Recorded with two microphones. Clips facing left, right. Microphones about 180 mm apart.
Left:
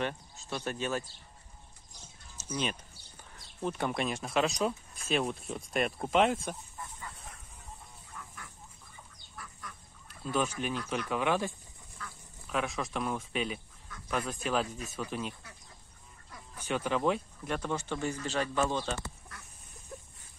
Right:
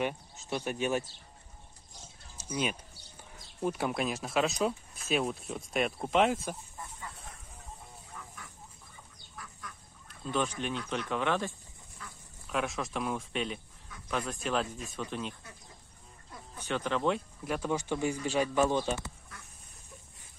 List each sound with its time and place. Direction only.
0.0 s speech: 15° right (ahead or behind)
2.3 s speech: 10° right (ahead or behind)
9.4 s duck: centre (ahead or behind)
12.4 s speech: centre (ahead or behind)
16.5 s speech: 10° left (ahead or behind); by 18.9 s 15° right (ahead or behind)